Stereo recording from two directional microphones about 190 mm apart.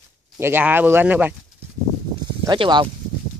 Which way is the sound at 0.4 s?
10° right (ahead or behind).